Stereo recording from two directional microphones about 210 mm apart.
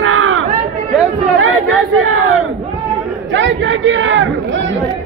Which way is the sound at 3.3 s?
65° right (ahead or behind).